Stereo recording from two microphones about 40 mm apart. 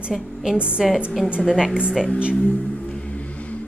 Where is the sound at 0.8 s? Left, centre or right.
Centre.